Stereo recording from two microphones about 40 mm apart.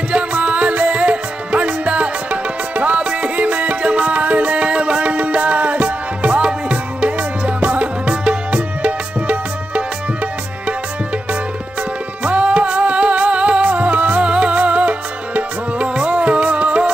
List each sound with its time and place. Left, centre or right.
0.1 s music: right
12.2 s music: right